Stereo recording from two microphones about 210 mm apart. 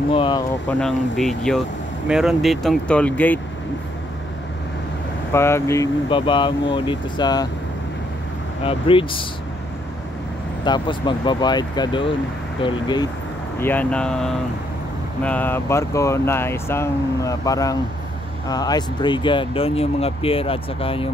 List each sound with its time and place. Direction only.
0.1 s speech: 25° left (ahead or behind)
0.7 s speech: 5° left (ahead or behind)
5.3 s speech: 10° left (ahead or behind)
8.6 s speech: 25° left (ahead or behind)
10.6 s speech: 20° left (ahead or behind)
13.6 s speech: 10° left (ahead or behind); by 21.1 s 25° left (ahead or behind)